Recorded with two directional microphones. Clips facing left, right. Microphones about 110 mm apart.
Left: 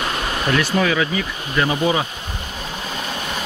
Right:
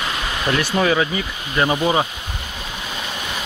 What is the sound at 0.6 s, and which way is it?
Speech, 25° right (ahead or behind).